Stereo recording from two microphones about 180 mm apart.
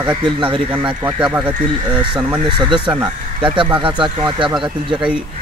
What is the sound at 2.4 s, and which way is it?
Speech, 25° right (ahead or behind).